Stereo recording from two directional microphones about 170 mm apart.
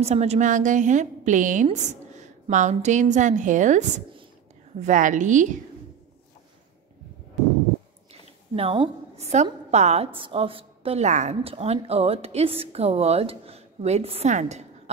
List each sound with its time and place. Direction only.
0.0 s a woman's voice: 40° right (ahead or behind)
8.1 s a woman's voice: 35° right (ahead or behind)